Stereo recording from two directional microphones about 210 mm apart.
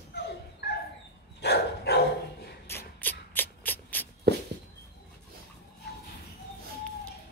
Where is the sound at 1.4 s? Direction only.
50° left (ahead or behind).